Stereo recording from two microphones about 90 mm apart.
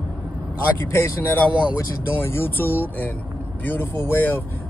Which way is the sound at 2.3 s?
25° left (ahead or behind).